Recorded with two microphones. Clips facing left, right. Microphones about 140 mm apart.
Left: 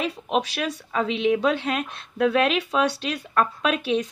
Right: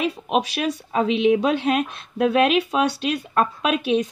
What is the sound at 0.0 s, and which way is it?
Speech, 15° right (ahead or behind).